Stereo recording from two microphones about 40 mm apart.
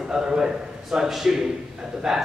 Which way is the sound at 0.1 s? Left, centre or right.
Centre.